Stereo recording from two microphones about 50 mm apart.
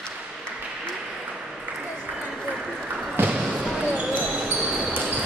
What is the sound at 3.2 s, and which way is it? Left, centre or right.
Basketball bounce, right.